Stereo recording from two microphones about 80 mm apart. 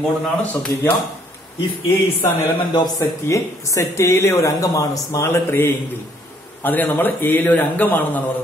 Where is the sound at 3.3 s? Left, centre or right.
Left.